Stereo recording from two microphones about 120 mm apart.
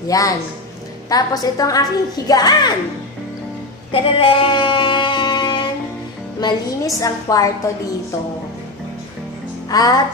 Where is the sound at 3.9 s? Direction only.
45° left (ahead or behind).